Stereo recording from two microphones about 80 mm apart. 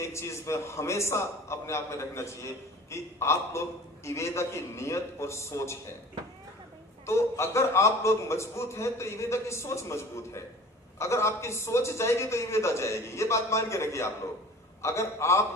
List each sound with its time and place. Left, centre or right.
0.0 s a man's voice: left
7.1 s a man's voice: left